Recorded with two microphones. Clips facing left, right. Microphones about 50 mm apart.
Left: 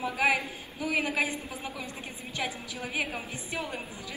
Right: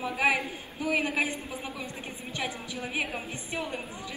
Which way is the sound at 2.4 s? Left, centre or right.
Right.